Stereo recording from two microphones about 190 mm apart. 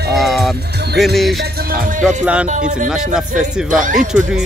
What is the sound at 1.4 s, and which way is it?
Music, 50° right (ahead or behind).